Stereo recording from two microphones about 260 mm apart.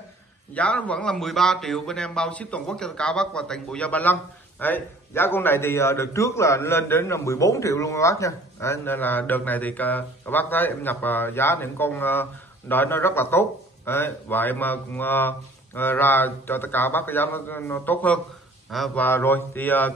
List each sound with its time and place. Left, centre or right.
0.6 s a man's voice: centre